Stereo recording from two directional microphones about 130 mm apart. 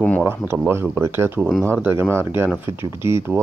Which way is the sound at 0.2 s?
20° right (ahead or behind).